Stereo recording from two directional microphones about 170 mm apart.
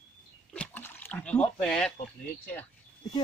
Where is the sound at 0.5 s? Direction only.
10° left (ahead or behind).